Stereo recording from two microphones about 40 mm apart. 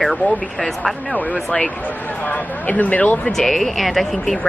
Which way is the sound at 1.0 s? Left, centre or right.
Left.